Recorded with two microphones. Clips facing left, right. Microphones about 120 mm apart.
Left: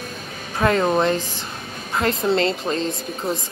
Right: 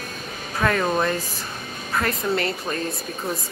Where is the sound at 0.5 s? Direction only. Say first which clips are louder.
Left 3 dB; 20° left (ahead or behind).